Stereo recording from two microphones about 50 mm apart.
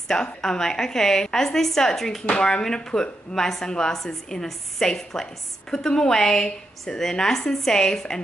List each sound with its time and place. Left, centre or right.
0.1 s a woman's voice: centre
2.2 s a woman's voice: left